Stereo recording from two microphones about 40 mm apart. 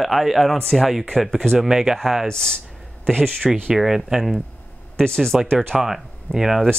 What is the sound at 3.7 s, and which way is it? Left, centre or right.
Speech, centre.